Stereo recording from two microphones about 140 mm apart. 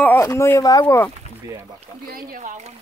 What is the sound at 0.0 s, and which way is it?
Speech, 20° left (ahead or behind).